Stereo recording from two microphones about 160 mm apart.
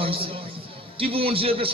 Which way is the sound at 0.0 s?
35° right (ahead or behind).